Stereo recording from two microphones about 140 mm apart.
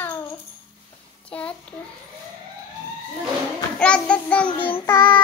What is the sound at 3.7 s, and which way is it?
Child singing, 5° left (ahead or behind).